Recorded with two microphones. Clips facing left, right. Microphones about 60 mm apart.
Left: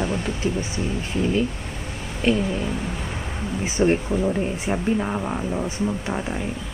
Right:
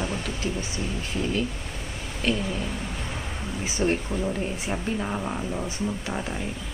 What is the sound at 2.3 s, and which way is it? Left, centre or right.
Speech, centre.